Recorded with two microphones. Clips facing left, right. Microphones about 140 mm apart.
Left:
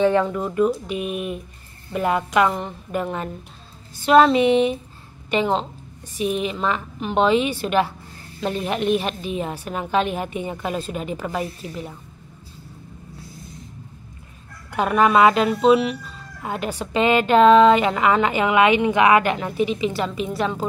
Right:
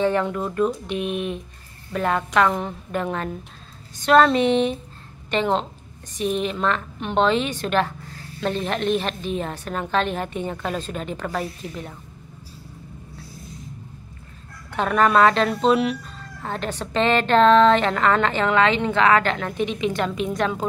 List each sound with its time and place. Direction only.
0.2 s speech: 5° left (ahead or behind)
14.7 s speech: 10° left (ahead or behind)